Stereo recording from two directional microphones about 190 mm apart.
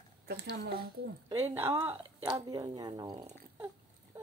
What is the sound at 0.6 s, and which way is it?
Speech, 50° right (ahead or behind).